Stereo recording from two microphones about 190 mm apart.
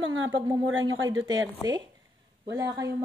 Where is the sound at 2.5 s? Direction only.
15° right (ahead or behind).